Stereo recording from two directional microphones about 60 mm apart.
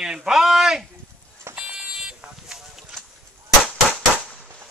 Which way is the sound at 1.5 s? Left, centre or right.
Centre.